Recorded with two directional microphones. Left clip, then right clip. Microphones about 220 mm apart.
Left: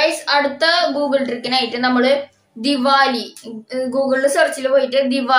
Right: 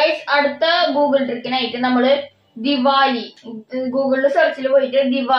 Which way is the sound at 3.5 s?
15° left (ahead or behind).